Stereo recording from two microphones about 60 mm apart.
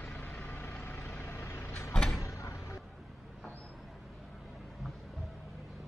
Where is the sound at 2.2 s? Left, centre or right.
Left.